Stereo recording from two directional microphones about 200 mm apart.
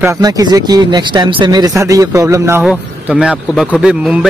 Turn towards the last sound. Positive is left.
turn(degrees=-5)  # may be behind; listen again after turning